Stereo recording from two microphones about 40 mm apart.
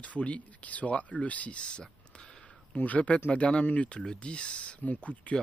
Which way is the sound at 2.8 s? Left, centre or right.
Left.